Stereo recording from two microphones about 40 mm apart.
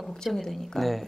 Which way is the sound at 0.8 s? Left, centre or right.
Centre.